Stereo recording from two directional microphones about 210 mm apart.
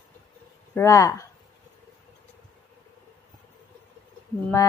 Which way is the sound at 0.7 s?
15° left (ahead or behind).